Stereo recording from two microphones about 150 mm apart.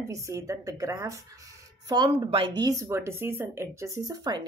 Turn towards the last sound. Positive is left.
turn(degrees=-25)  # may be behind; listen again after turning